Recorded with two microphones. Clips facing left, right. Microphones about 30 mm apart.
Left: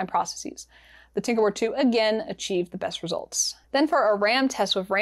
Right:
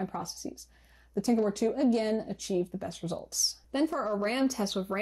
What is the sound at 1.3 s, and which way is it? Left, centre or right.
Speech, left.